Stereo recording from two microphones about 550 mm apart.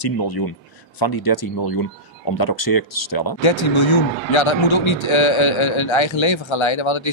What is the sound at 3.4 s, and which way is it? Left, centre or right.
A man's voice, left.